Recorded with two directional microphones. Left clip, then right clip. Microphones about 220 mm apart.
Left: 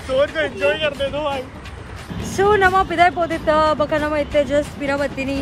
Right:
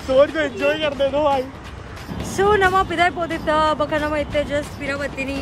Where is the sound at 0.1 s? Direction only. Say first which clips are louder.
Right 2 dB; 40° right (ahead or behind).